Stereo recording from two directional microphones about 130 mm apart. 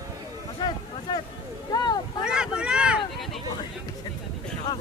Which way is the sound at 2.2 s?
5° right (ahead or behind).